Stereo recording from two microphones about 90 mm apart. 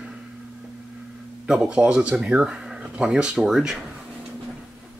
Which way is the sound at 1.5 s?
10° right (ahead or behind).